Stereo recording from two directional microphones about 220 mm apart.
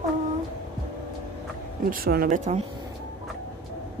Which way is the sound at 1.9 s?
40° right (ahead or behind).